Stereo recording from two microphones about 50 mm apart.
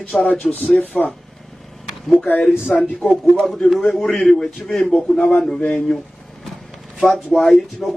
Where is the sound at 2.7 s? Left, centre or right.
Centre.